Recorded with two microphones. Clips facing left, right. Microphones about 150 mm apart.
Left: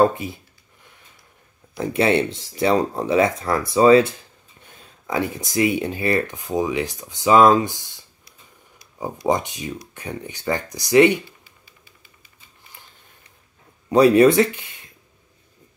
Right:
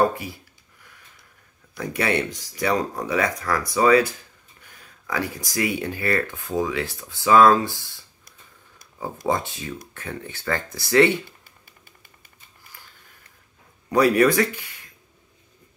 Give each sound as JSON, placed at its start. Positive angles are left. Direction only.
{"t": 0.0, "sound": "speech", "side_deg": 20}
{"t": 1.8, "sound": "speech", "side_deg": 25}
{"t": 9.3, "sound": "speech", "side_deg": 15}
{"t": 11.4, "sound": "a sound", "side_deg": -50}
{"t": 13.8, "sound": "speech", "side_deg": 25}